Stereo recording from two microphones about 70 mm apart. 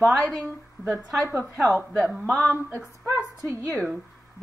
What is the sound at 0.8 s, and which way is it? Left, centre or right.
Speech, left.